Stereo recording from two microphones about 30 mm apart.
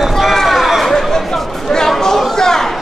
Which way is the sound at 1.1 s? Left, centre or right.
Centre.